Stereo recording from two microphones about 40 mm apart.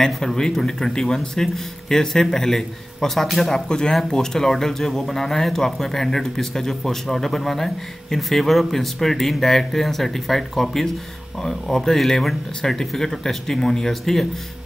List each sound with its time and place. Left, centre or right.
0.0 s speech: centre